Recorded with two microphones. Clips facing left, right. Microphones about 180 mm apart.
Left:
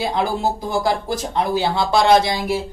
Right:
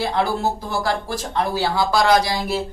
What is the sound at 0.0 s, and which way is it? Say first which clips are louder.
Speech: even; 15° left (ahead or behind).